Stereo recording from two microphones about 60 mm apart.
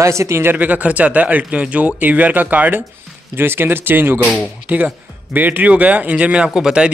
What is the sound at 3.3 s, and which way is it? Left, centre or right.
Speech, right.